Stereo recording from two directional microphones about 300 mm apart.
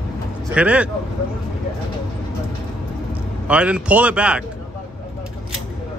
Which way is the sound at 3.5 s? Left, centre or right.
Centre.